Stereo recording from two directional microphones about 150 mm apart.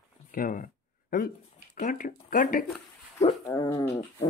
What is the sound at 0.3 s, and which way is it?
Speech, 65° left (ahead or behind).